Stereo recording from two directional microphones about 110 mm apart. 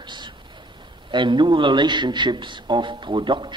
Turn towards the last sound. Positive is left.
turn(degrees=-45)  # may be behind; listen again after turning